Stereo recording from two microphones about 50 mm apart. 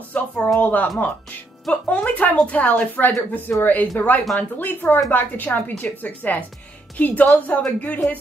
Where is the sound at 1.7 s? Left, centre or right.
Left.